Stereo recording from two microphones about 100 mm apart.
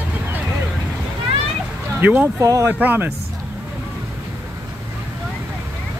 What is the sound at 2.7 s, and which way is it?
Speech, 20° right (ahead or behind).